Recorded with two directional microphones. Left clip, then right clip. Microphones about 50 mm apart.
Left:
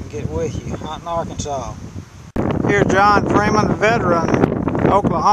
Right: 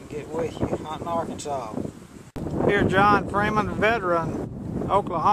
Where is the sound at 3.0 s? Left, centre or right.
Left.